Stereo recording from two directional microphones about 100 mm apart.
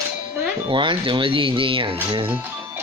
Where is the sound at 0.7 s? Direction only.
55° right (ahead or behind).